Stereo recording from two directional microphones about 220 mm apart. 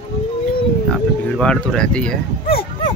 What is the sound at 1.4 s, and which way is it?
Speech, 5° left (ahead or behind).